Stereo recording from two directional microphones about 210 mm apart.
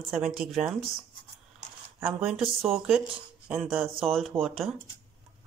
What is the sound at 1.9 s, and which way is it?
Speech, 5° right (ahead or behind).